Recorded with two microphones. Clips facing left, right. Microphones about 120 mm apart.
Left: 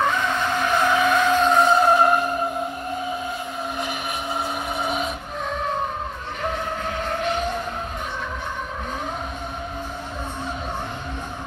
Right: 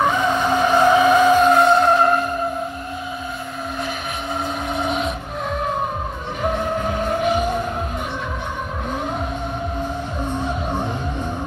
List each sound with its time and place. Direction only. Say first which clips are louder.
0.0 s vehicle: right 4 dB; 15° right (ahead or behind); by 2.2 s 10° left (ahead or behind)
4.7 s vehicle: right 4 dB; 5° left (ahead or behind)
6.4 s vehicle: right 6 dB; 10° right (ahead or behind)